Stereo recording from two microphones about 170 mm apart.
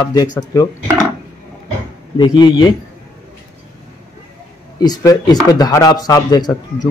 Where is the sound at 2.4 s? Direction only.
25° left (ahead or behind).